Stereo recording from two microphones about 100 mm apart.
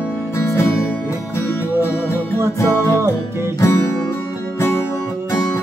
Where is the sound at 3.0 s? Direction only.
25° right (ahead or behind).